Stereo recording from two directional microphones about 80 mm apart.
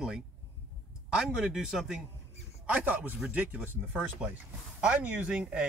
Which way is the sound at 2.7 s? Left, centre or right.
Centre.